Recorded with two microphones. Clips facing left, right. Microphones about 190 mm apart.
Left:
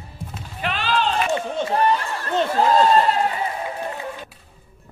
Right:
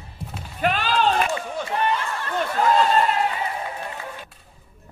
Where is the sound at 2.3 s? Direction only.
30° left (ahead or behind).